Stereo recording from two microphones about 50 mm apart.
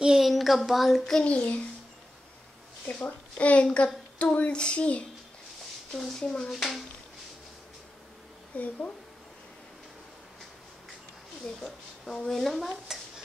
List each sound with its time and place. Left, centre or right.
0.0 s a sound: centre
1.2 s a woman's voice: left
3.0 s a woman's voice: left
5.9 s speech: centre
6.5 s speech: centre
8.5 s a woman's voice: left
11.6 s speech: centre